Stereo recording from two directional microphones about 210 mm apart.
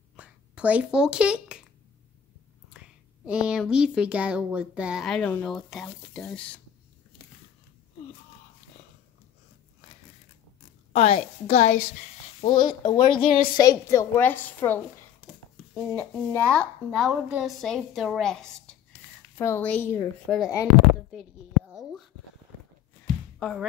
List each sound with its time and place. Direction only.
0.1 s a sound: 5° right (ahead or behind)
3.3 s speech: 5° right (ahead or behind)
10.9 s a sound: 30° left (ahead or behind)
11.4 s a woman's voice: 30° left (ahead or behind)
12.4 s a woman's voice: 20° left (ahead or behind)
20.2 s a woman's voice: centre (ahead or behind)